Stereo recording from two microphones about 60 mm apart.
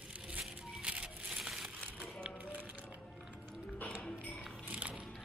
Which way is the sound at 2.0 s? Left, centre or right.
Right.